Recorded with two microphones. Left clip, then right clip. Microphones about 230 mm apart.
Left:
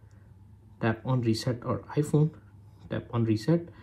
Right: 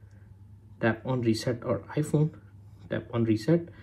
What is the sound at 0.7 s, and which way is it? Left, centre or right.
Speech, left.